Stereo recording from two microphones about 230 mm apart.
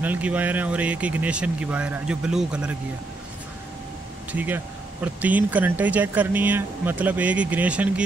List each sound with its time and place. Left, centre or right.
0.0 s speech: centre
4.3 s speech: centre